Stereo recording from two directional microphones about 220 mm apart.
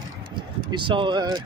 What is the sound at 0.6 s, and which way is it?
Speech, 20° right (ahead or behind).